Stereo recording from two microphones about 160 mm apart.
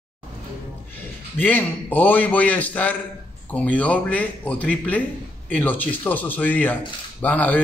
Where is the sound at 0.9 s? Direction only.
10° left (ahead or behind).